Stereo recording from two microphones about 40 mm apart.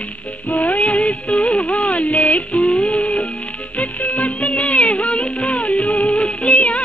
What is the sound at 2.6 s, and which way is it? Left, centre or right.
Music, left.